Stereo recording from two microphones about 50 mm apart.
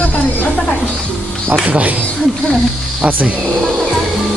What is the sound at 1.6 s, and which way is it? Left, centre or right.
Speech, right.